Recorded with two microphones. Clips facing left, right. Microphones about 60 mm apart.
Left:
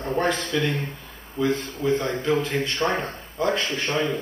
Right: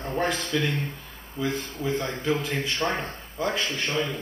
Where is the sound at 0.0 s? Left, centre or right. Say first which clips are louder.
Left 3 dB; centre.